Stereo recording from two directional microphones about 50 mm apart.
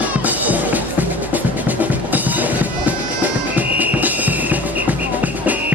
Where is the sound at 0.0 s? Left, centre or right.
Right.